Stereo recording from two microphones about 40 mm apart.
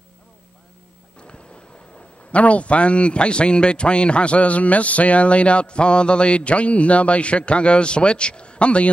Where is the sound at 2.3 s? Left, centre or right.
Left.